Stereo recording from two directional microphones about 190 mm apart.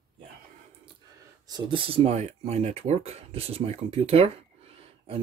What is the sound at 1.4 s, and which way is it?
Speech, 25° right (ahead or behind).